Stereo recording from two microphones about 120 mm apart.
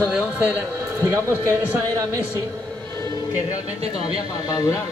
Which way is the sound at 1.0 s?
20° right (ahead or behind).